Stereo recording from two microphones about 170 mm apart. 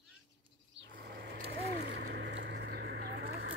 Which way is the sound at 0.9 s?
70° right (ahead or behind).